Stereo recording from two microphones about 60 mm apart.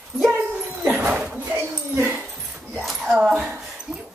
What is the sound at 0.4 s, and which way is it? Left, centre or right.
Dog, right.